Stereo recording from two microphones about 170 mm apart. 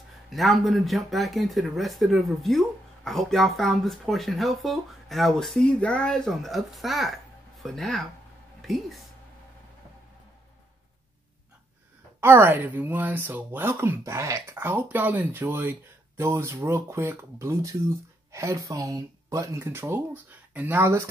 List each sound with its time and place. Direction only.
0.3 s speech: centre (ahead or behind)
12.2 s speech: 15° right (ahead or behind)